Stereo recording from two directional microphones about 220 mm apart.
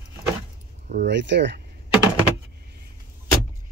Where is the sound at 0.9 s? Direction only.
50° right (ahead or behind).